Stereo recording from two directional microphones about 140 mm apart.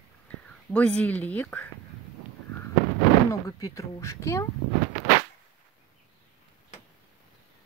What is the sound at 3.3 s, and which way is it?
Speech, 25° left (ahead or behind).